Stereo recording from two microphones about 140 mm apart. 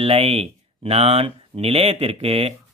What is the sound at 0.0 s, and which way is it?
Speech, 45° right (ahead or behind).